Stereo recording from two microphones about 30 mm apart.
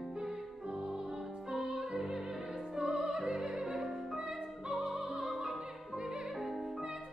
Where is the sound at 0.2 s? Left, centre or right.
Right.